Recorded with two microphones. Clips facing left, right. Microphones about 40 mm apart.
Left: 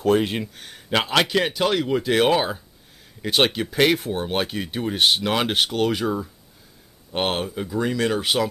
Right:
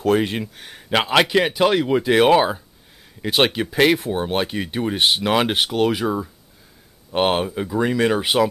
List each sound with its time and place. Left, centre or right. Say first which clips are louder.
0.0 s speech: right 1 dB; centre